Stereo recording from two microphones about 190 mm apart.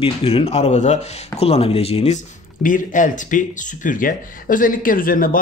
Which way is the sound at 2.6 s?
45° left (ahead or behind).